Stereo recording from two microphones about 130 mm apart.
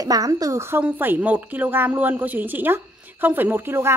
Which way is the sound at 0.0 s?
30° right (ahead or behind).